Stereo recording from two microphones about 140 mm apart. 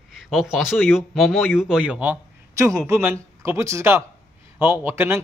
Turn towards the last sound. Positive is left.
turn(degrees=-15)  # may be behind; listen again after turning